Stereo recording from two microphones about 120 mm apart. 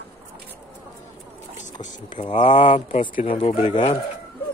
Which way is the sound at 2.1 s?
45° left (ahead or behind).